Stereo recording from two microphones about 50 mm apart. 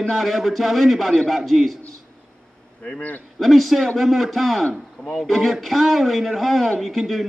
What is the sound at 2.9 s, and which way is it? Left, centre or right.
Speech, left.